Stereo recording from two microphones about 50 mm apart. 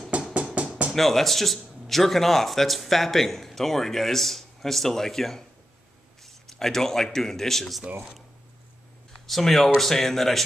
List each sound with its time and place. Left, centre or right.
0.1 s music: right
0.9 s a man's voice: centre
9.3 s speech: centre